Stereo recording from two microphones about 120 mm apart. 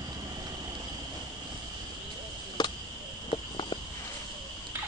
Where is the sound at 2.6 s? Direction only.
35° left (ahead or behind).